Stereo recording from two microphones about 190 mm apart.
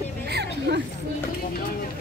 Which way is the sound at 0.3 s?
60° right (ahead or behind).